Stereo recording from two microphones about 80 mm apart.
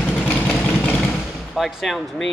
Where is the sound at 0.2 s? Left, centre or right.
Left.